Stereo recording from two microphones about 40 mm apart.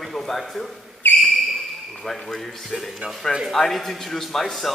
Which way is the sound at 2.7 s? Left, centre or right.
Centre.